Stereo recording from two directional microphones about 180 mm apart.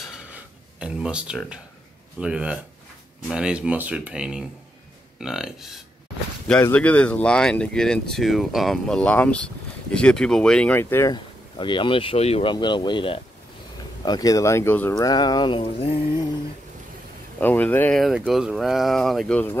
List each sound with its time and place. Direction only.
0.7 s speech: 5° right (ahead or behind); by 11.1 s 15° left (ahead or behind)
11.5 s speech: 25° left (ahead or behind)
17.4 s speech: 10° left (ahead or behind)
18.0 s speech: 5° right (ahead or behind)